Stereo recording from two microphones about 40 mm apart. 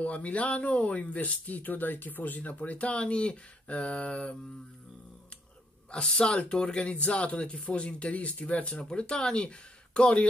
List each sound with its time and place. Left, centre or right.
0.0 s speech: left
5.9 s speech: left